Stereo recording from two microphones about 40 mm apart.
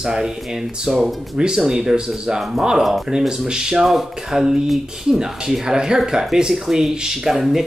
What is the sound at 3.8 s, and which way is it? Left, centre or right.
Speech, centre.